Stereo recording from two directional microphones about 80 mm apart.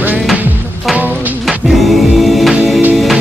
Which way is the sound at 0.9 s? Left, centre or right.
Right.